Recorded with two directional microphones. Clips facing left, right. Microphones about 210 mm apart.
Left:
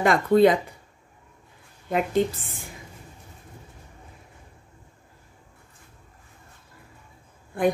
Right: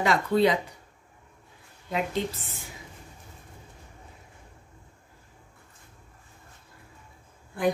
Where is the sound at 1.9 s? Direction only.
50° left (ahead or behind).